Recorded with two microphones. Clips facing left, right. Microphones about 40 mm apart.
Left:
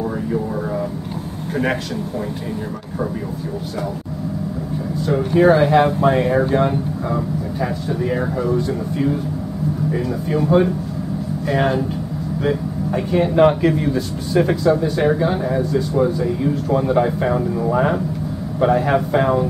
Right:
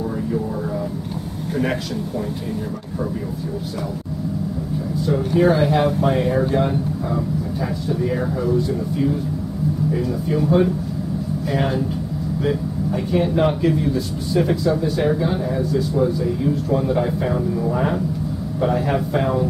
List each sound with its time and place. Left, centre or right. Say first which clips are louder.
5.1 s speech: left 3 dB; left
9.9 s a man's voice: left 1 dB; centre